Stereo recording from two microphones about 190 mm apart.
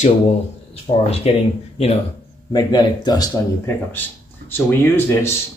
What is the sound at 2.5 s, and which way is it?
Speech, 20° left (ahead or behind).